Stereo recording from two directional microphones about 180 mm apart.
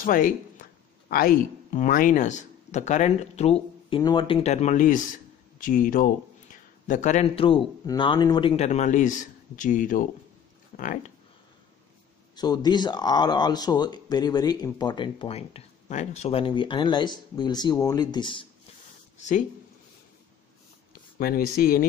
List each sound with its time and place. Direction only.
0.0 s a man's voice: 50° left (ahead or behind)
3.9 s a man's voice: 25° left (ahead or behind); by 10.0 s 50° left (ahead or behind)
10.7 s a sound: 40° left (ahead or behind)
12.4 s speech: 25° left (ahead or behind)
19.1 s speech: 40° left (ahead or behind)
21.2 s speech: 55° left (ahead or behind)